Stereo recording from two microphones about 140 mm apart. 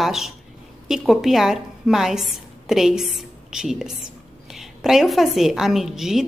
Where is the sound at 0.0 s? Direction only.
Centre (ahead or behind).